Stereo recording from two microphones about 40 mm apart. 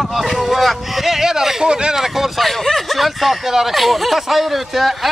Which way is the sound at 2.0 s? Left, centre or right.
Centre.